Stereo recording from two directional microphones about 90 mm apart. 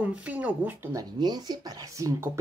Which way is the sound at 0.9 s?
45° right (ahead or behind).